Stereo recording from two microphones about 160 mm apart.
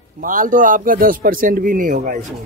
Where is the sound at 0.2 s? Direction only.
60° right (ahead or behind).